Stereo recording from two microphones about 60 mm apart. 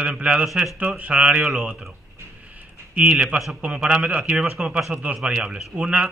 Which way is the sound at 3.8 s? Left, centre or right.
Centre.